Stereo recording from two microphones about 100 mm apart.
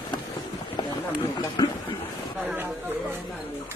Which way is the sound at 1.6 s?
50° left (ahead or behind).